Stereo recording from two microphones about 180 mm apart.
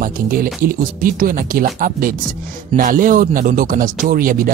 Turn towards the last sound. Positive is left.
turn(degrees=-50)  # may be behind; listen again after turning